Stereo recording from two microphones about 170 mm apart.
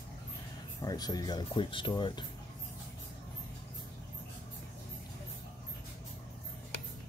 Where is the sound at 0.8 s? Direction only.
20° left (ahead or behind).